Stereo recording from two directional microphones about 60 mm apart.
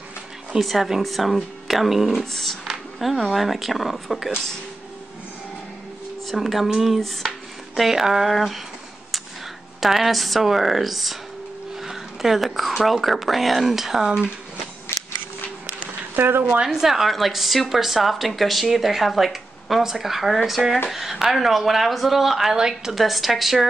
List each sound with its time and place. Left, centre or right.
0.6 s a woman's voice: centre
6.2 s speech: centre
9.8 s a woman's voice: centre
16.2 s a woman's voice: right
16.6 s a woman's voice: centre